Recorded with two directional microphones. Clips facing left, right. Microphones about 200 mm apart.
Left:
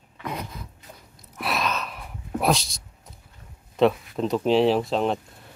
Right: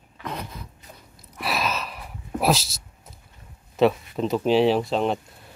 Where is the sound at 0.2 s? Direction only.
5° left (ahead or behind).